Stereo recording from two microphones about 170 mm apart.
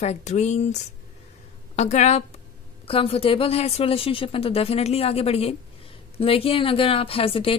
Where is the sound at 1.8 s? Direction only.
40° left (ahead or behind).